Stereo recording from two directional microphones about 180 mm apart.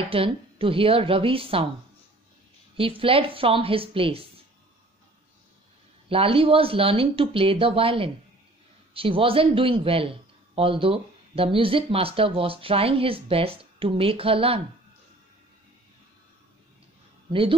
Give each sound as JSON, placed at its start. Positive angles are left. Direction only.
{"t": 0.1, "sound": "a man's voice", "side_deg": -30}
{"t": 2.8, "sound": "a man's voice", "side_deg": -30}
{"t": 6.0, "sound": "a man's voice", "side_deg": -30}
{"t": 17.3, "sound": "speech", "side_deg": -30}